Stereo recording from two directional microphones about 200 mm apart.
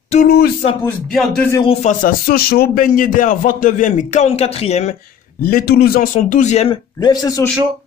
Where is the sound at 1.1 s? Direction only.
Centre (ahead or behind).